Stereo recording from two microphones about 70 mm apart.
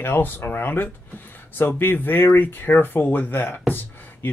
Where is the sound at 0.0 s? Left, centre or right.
Left.